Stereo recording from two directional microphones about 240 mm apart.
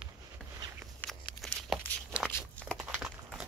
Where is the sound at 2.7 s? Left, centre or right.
Centre.